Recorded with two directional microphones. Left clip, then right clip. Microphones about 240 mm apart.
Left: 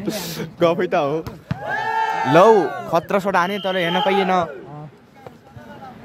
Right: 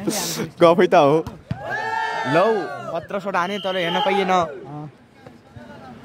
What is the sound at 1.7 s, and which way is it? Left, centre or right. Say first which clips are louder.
Speech: left 3 dB; centre.